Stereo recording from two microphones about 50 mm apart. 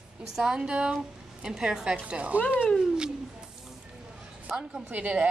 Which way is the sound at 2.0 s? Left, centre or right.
Right.